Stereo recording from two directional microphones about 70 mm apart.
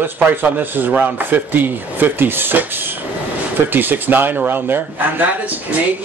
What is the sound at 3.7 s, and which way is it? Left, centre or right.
Speech, right.